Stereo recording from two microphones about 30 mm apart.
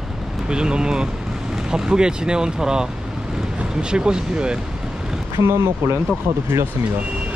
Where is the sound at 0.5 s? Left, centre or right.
Right.